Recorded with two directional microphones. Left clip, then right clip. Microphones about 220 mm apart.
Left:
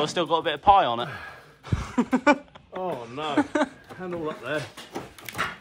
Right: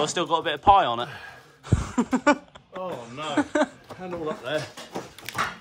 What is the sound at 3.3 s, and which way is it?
Speech, 20° right (ahead or behind).